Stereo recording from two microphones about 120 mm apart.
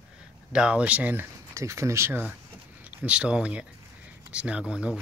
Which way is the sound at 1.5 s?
25° right (ahead or behind).